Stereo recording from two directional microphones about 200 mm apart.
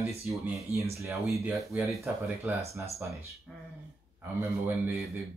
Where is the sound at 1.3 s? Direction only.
Centre (ahead or behind).